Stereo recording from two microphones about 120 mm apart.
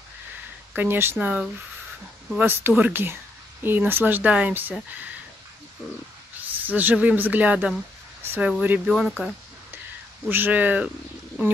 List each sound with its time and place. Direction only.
0.7 s speech: 20° right (ahead or behind)
6.6 s speech: 15° right (ahead or behind)
10.3 s speech: 15° right (ahead or behind)